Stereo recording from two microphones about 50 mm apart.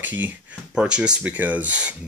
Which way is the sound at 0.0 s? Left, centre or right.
Right.